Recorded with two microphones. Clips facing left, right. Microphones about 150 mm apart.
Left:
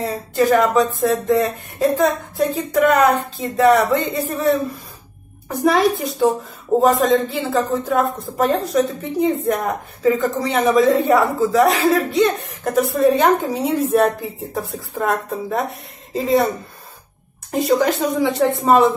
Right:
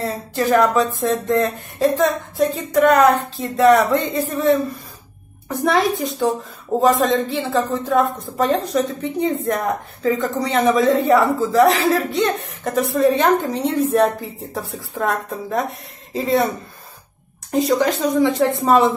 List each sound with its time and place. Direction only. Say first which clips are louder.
0.0 s a woman's voice: left 3 dB; centre (ahead or behind)
17.5 s a woman's voice: even; centre (ahead or behind)